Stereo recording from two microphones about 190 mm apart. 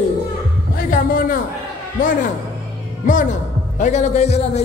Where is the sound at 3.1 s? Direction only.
45° left (ahead or behind).